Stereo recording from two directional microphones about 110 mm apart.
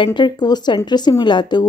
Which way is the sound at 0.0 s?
45° left (ahead or behind).